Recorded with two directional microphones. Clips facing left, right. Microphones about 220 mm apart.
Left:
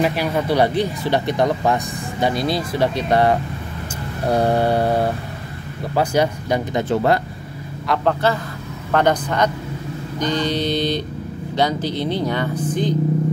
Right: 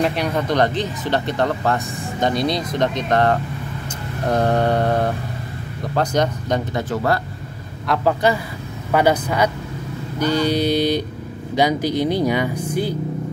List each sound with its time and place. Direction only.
0.0 s speech: 5° left (ahead or behind)
6.8 s speech: 25° left (ahead or behind)
7.9 s speech: 5° right (ahead or behind)